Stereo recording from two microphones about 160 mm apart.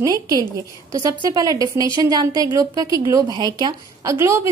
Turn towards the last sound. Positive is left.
turn(degrees=-15)  # may be behind; listen again after turning